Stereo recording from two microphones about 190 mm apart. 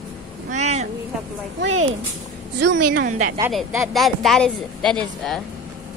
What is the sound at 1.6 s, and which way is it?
Speech, 90° right.